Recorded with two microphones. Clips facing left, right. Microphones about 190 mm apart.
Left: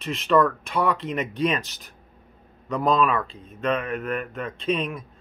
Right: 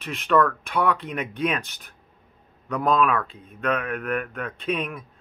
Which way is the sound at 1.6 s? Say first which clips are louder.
Left 2 dB; 55° right (ahead or behind).